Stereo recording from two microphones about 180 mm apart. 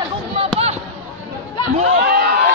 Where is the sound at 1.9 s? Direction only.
55° right (ahead or behind).